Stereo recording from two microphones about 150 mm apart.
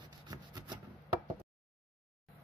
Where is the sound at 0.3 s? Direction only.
25° right (ahead or behind).